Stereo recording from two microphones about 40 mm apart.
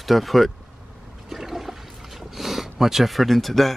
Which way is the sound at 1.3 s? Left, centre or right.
Centre.